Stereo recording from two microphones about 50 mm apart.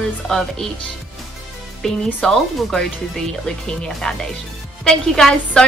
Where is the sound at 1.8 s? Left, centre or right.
Centre.